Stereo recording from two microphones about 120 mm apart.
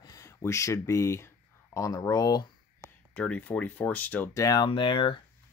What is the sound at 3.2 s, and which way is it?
Speech, 10° left (ahead or behind).